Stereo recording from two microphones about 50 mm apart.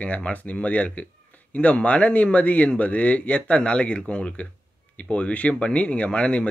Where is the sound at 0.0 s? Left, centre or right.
Left.